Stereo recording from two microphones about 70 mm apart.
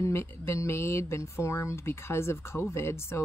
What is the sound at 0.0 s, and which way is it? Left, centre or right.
A woman's voice, left.